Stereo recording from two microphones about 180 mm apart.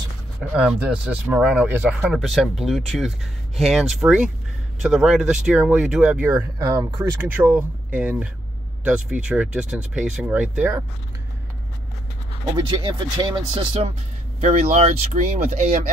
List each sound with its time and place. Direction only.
0.4 s speech: 5° right (ahead or behind)
6.6 s speech: 20° right (ahead or behind)
12.5 s speech: 25° right (ahead or behind); by 15.8 s 40° right (ahead or behind)